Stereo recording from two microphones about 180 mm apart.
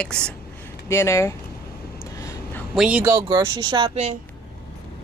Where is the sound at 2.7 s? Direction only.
5° right (ahead or behind).